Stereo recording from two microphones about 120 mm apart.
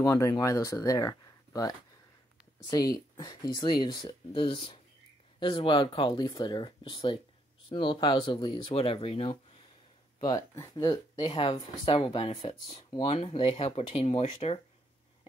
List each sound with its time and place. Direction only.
0.0 s speech: 30° left (ahead or behind)
2.7 s speech: 35° left (ahead or behind); by 9.4 s 55° left (ahead or behind)
10.5 s speech: 30° left (ahead or behind); by 14.6 s 60° left (ahead or behind)